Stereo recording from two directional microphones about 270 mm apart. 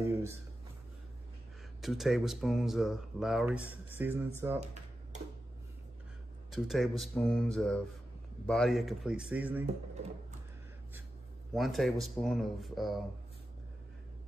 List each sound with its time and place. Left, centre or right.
0.0 s a sound: centre
1.8 s speech: centre
6.5 s speech: centre
11.5 s speech: centre